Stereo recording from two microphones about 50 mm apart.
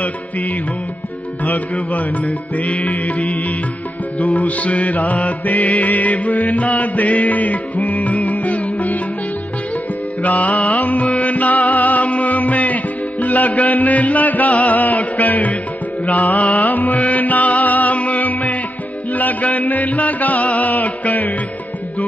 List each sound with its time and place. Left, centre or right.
0.0 s music: left
10.2 s music: left